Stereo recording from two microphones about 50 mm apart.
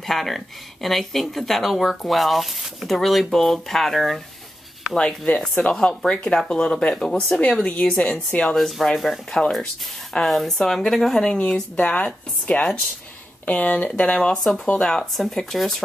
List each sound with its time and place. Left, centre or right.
0.0 s speech: centre
4.9 s speech: centre
7.6 s speech: left
8.5 s speech: centre
11.7 s speech: left
14.2 s speech: centre